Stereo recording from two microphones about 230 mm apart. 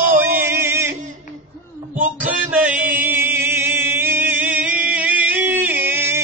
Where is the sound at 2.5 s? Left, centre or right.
Centre.